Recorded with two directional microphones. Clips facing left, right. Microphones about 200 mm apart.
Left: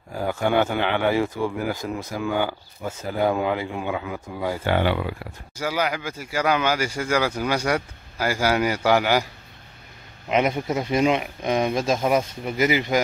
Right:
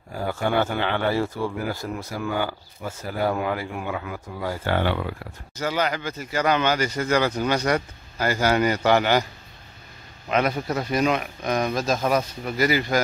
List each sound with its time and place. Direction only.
0.3 s speech: 15° left (ahead or behind)
10.2 s speech: 20° left (ahead or behind)